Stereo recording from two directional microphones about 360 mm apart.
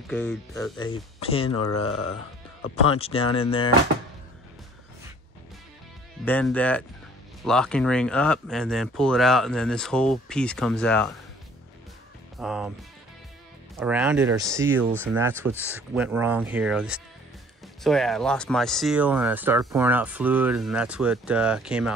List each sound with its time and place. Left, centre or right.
0.1 s speech: centre
0.8 s speech: centre
1.5 s speech: left
3.0 s speech: centre
6.2 s speech: centre
12.4 s speech: centre
13.7 s speech: centre